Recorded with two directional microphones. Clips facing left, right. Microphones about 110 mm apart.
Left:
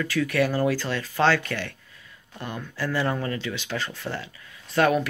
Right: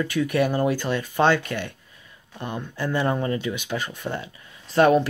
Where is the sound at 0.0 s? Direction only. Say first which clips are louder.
Right 2 dB; 20° right (ahead or behind).